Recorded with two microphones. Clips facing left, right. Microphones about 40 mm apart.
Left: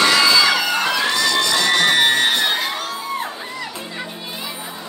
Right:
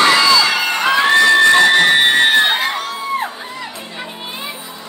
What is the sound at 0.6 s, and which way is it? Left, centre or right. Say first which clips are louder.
Crowd: right 5 dB; right.